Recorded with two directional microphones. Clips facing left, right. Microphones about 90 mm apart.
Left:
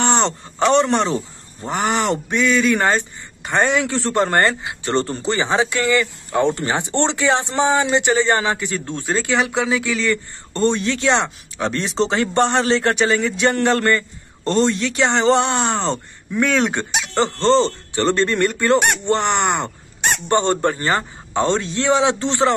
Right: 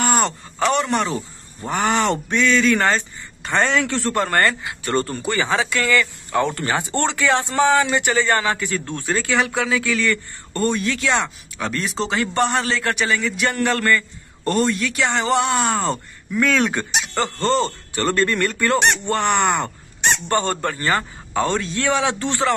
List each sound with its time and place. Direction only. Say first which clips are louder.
0.0 s speech: left 1 dB; 25° left (ahead or behind)